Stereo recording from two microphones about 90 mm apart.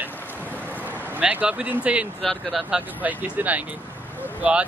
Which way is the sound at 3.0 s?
15° right (ahead or behind).